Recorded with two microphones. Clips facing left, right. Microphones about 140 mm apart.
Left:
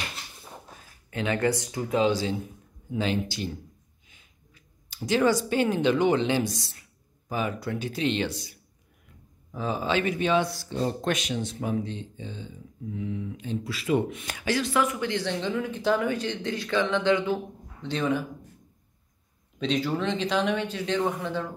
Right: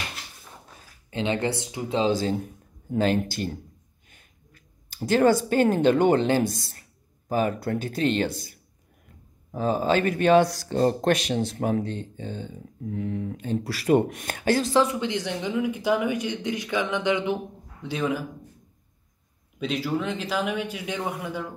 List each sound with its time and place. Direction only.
1.1 s speech: 25° right (ahead or behind)
2.1 s a man's voice: 50° right (ahead or behind)
14.7 s speech: 30° right (ahead or behind)
15.0 s speech: 15° right (ahead or behind)
19.6 s speech: 5° right (ahead or behind)